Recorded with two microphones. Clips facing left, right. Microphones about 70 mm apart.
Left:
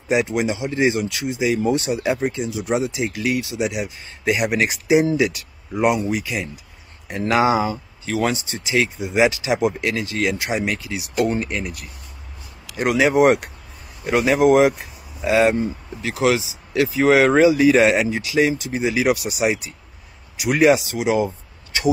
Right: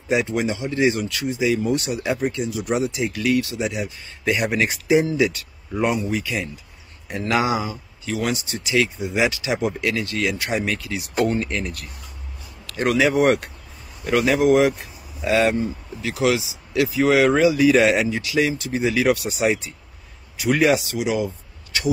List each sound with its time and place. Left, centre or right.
0.1 s speech: centre
10.9 s speech: centre
12.6 s speech: centre